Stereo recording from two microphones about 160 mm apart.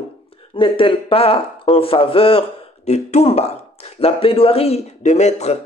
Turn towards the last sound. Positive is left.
turn(degrees=45)  # may be behind; listen again after turning